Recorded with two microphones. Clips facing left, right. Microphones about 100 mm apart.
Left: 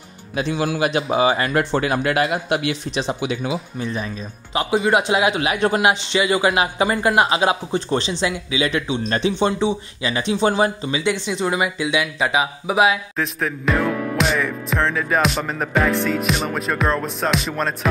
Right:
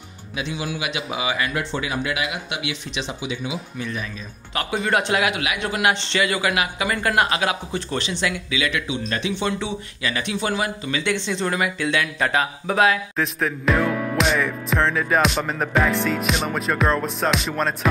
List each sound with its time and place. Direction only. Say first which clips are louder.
0.4 s speech: left 7 dB; 50° left (ahead or behind)
3.8 s speech: left 1 dB; 30° left (ahead or behind)
4.6 s speech: left 4 dB; 15° left (ahead or behind); by 5.8 s 35° left (ahead or behind)
5.9 s speech: left 3 dB; 15° left (ahead or behind)
11.2 s speech: left 2 dB; 15° left (ahead or behind)
13.1 s music: even; centre (ahead or behind)